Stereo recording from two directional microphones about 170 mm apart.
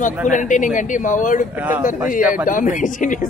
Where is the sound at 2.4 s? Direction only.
50° left (ahead or behind).